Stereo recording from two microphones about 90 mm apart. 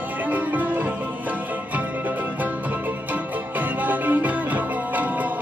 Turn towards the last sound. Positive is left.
turn(degrees=-20)  # may be behind; listen again after turning